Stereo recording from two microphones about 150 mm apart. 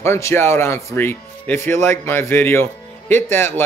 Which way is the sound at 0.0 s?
15° left (ahead or behind).